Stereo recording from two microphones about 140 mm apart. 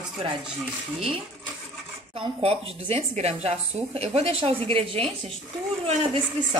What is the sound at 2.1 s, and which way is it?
A woman's voice, 45° right (ahead or behind).